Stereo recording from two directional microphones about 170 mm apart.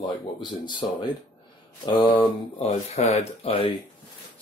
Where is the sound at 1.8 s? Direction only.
30° left (ahead or behind).